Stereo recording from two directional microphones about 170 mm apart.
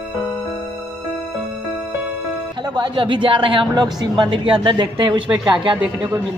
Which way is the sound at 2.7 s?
30° right (ahead or behind).